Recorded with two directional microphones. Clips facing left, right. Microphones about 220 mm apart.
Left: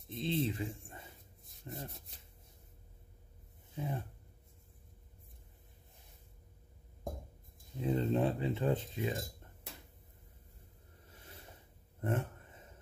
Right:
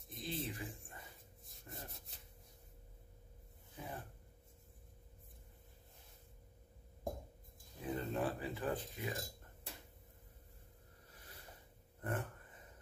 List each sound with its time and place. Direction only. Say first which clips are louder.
0.1 s speech: left 9 dB; 25° left (ahead or behind)
1.4 s rub: left 7 dB; centre (ahead or behind)
3.8 s speech: left 9 dB; 25° left (ahead or behind)
7.7 s speech: left 8 dB; 25° left (ahead or behind)
12.0 s a sound: left 6 dB; 25° left (ahead or behind)